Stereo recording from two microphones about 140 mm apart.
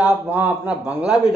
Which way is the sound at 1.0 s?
25° left (ahead or behind).